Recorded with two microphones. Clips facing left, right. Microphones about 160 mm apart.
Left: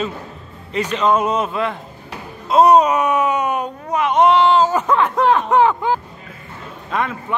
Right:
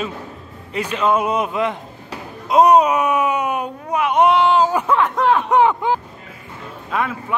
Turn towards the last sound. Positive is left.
turn(degrees=-5)  # may be behind; listen again after turning